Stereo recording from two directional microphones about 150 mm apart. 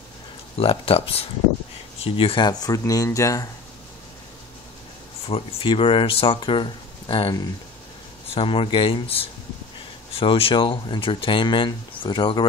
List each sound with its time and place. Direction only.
0.6 s speech: 40° left (ahead or behind); by 3.4 s 20° left (ahead or behind)
5.2 s speech: 40° left (ahead or behind)
8.4 s speech: 35° left (ahead or behind)